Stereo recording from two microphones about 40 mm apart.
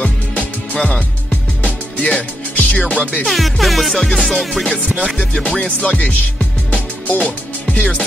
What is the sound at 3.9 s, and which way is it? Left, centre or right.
Music, centre.